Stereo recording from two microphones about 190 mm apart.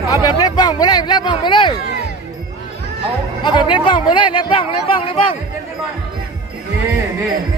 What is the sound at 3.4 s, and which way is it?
Speech, 25° left (ahead or behind).